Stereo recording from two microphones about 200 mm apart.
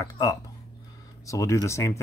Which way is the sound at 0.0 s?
15° left (ahead or behind).